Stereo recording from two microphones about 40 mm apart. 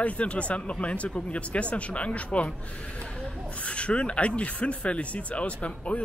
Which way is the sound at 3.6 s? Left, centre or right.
Left.